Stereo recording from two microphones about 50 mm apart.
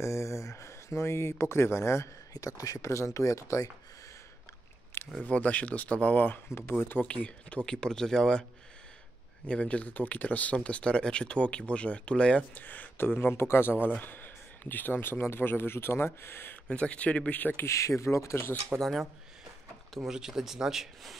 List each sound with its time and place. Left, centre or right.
0.0 s speech: left
2.8 s speech: left
5.2 s speech: left
6.5 s speech: left
7.0 s speech: left
9.5 s speech: left
12.5 s speech: left
13.2 s speech: left
16.6 s speech: left
17.6 s speech: left
18.8 s speech: centre
20.1 s speech: centre